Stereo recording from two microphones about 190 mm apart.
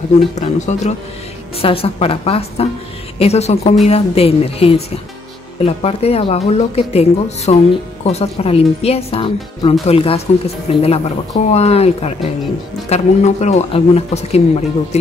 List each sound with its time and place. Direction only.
0.4 s speech: 35° left (ahead or behind)